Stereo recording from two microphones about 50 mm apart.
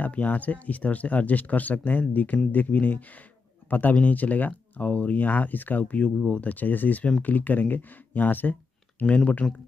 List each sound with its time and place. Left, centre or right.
0.0 s speech: left
6.5 s speech: left
9.0 s speech: left